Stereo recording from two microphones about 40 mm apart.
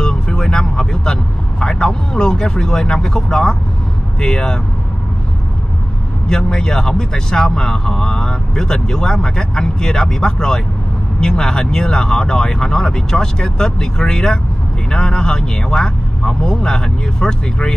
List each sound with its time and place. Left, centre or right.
0.0 s vehicle: centre
3.3 s speech: centre
6.2 s speech: centre